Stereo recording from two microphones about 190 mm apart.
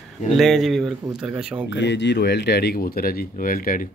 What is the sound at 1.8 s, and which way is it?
Speech, 65° left (ahead or behind).